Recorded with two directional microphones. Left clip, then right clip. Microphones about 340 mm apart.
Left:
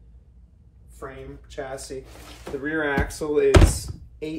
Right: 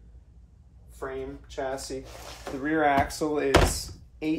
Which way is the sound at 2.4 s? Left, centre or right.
Centre.